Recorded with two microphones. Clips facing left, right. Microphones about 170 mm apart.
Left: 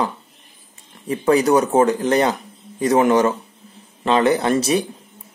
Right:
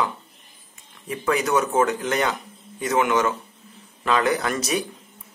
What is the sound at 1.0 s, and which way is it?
A man's voice, 35° left (ahead or behind).